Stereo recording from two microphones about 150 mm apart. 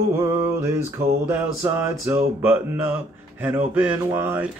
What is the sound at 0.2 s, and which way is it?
Speech, 20° right (ahead or behind).